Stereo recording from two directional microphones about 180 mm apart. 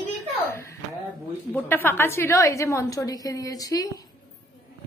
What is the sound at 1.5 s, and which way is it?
A woman's voice, 10° left (ahead or behind).